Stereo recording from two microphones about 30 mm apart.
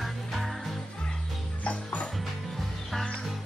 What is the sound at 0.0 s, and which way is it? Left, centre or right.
Music, centre.